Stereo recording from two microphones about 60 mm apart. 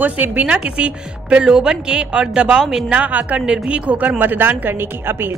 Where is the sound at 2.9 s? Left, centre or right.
Right.